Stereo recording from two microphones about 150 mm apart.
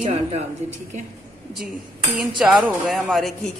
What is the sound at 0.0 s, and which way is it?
Speech, 45° right (ahead or behind).